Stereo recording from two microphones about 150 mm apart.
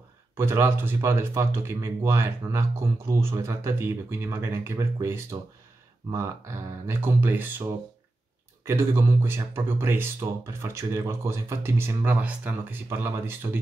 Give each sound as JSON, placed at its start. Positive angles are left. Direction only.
{"t": 0.4, "sound": "speech", "side_deg": -15}